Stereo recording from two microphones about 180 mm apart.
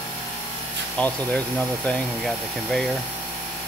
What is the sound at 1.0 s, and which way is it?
Speech, 5° left (ahead or behind).